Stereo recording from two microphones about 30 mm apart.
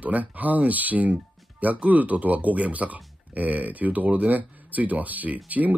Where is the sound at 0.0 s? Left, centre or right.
Right.